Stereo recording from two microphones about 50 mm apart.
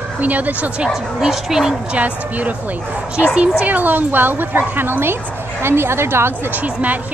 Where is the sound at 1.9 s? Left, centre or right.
Right.